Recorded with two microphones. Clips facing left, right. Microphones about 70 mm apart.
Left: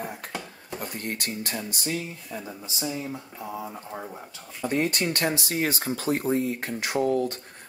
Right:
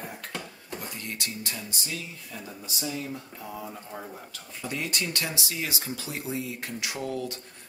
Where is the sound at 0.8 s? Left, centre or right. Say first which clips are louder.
Left 5 dB; left.